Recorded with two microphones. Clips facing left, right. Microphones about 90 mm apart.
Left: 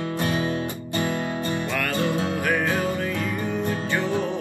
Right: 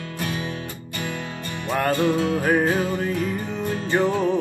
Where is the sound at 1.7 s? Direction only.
30° right (ahead or behind).